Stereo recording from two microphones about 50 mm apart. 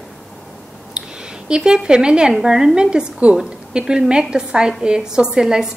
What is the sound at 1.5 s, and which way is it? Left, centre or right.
A woman's voice, centre.